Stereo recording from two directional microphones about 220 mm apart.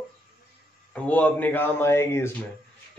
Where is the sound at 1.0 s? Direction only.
5° left (ahead or behind).